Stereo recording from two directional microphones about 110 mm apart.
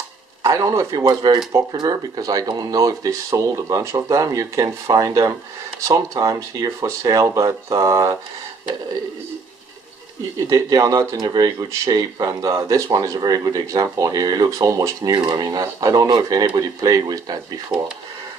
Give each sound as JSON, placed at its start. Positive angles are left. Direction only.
{"t": 0.4, "sound": "speech", "side_deg": -30}
{"t": 10.5, "sound": "speech", "side_deg": -35}